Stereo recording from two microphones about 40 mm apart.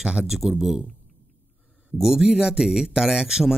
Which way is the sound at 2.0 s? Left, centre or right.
Centre.